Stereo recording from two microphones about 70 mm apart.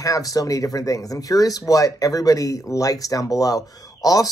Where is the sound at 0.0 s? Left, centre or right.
Left.